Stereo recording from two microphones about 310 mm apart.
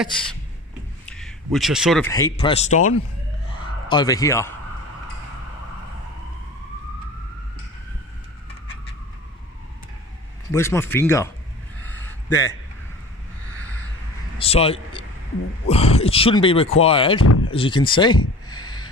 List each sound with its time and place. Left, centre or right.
1.0 s speech: centre; by 2.9 s left
3.9 s speech: centre
10.5 s speech: centre
11.9 s a sound: centre
14.4 s a man's voice: centre
17.2 s speech: left
17.5 s speech: centre
18.5 s a sound: centre